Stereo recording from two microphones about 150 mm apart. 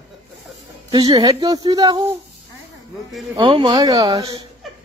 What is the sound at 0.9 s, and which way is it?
Speech, 25° right (ahead or behind).